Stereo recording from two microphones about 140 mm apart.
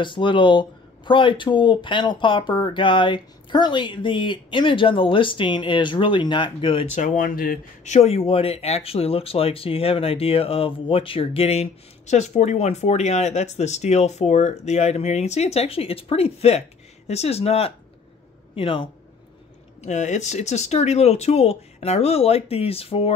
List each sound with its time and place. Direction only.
0.0 s speech: 35° left (ahead or behind)
7.0 s speech: 70° left (ahead or behind); by 18.9 s 40° left (ahead or behind)
19.8 s speech: 55° left (ahead or behind)